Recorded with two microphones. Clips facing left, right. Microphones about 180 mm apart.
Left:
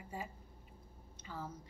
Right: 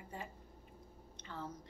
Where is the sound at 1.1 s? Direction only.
5° left (ahead or behind).